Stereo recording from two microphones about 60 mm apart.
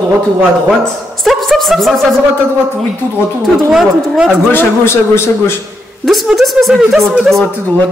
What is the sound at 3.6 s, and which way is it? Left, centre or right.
Speech, centre.